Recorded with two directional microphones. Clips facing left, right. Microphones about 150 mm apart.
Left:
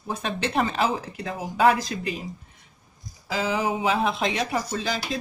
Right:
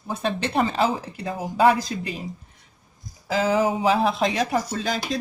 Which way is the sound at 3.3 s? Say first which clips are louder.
Right 4 dB; 40° right (ahead or behind).